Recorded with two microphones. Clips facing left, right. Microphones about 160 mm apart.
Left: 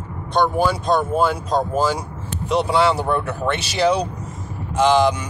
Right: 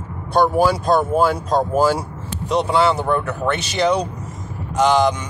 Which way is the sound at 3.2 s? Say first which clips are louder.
Right 1 dB; 30° left (ahead or behind).